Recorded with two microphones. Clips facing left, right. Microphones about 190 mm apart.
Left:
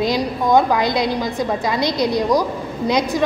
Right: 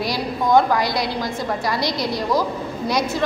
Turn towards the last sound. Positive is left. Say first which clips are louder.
# left 3 dB
turn(degrees=20)  # may be behind; listen again after turning